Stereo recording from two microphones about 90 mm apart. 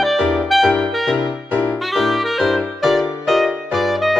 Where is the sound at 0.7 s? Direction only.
10° left (ahead or behind).